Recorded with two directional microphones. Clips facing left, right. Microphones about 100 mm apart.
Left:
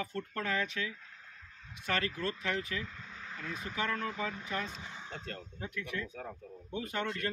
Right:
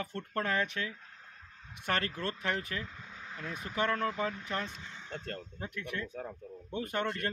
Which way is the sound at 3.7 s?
50° right (ahead or behind).